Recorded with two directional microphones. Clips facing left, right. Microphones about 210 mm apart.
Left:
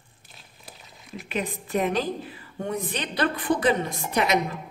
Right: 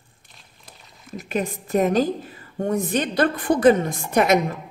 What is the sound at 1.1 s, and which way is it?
A woman's voice, 45° right (ahead or behind).